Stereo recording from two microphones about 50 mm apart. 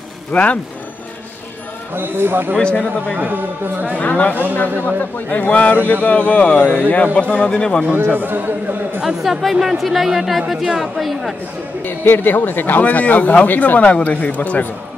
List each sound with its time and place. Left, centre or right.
0.3 s a man's voice: left
2.0 s speech: right
2.5 s a man's voice: centre
3.2 s a man's voice: right
4.0 s a man's voice: left
7.8 s a man's voice: right
9.0 s speech: centre
11.8 s a man's voice: left